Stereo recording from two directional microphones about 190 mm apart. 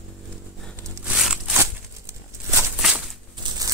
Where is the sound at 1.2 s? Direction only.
Centre (ahead or behind).